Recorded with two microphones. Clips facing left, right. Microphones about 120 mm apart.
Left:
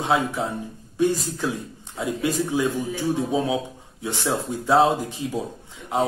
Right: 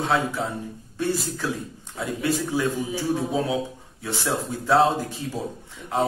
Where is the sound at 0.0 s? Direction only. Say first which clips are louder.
Left 1 dB; 20° left (ahead or behind).